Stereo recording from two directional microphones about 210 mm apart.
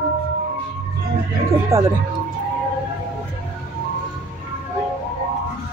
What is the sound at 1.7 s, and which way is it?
Speech, 15° right (ahead or behind).